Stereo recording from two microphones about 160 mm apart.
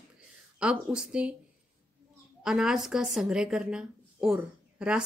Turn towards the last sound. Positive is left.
turn(degrees=-5)  # may be behind; listen again after turning